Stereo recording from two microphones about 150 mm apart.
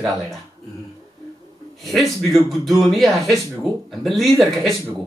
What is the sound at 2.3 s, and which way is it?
A man's voice, centre (ahead or behind).